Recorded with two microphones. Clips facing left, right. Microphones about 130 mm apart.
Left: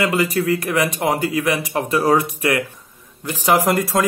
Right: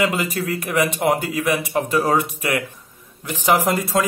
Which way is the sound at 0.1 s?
Centre (ahead or behind).